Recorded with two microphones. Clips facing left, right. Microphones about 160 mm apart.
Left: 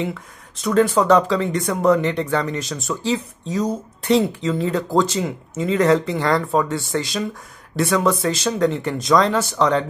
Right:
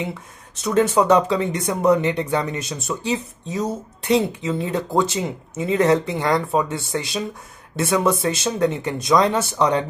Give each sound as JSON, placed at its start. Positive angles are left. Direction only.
{"t": 0.7, "sound": "speech", "side_deg": -25}